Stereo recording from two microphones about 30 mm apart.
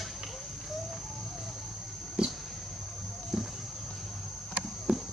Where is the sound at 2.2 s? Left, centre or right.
Right.